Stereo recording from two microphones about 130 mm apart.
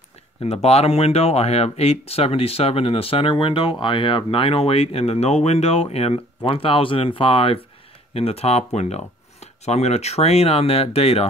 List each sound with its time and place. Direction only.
0.4 s speech: 50° left (ahead or behind)